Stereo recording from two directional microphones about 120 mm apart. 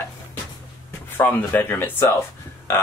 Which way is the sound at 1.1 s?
15° left (ahead or behind).